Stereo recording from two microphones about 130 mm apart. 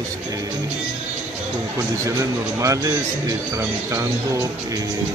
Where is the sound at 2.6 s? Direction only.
25° right (ahead or behind).